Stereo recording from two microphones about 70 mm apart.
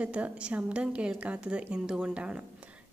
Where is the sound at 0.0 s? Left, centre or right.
Centre.